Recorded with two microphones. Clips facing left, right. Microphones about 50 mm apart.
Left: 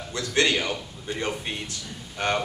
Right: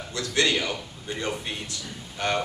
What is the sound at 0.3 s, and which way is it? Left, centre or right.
A man's voice, left.